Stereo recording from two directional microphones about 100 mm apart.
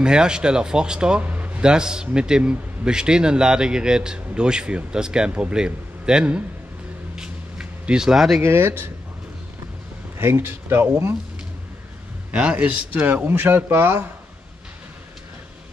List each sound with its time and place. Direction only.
0.0 s a man's voice: 10° right (ahead or behind)
7.2 s a sound: 10° right (ahead or behind)
8.4 s a man's voice: 25° right (ahead or behind)
10.1 s a man's voice: 25° right (ahead or behind)
12.3 s a man's voice: 15° right (ahead or behind)